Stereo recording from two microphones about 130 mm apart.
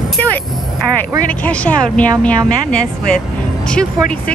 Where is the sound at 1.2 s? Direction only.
10° left (ahead or behind).